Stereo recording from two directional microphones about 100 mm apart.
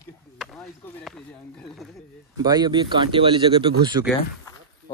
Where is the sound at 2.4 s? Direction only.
45° right (ahead or behind).